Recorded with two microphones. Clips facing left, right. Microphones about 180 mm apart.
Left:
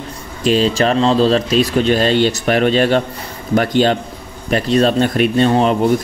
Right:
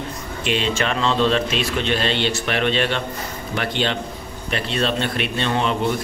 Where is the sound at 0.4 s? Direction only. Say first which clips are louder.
Left 8 dB; 40° left (ahead or behind).